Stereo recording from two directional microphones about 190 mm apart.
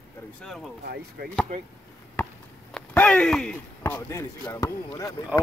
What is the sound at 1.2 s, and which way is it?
Speech, 50° right (ahead or behind).